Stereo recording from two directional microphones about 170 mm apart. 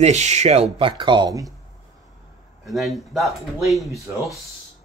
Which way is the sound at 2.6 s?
Centre (ahead or behind).